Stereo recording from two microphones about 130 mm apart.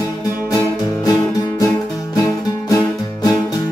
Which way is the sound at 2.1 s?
25° left (ahead or behind).